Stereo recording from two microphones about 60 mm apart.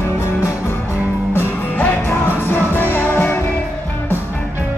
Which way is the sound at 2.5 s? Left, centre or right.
Left.